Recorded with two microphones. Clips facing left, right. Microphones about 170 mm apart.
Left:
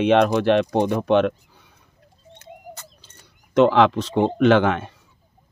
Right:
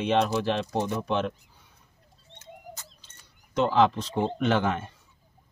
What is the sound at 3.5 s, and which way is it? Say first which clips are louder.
Speech: left 7 dB; 80° left.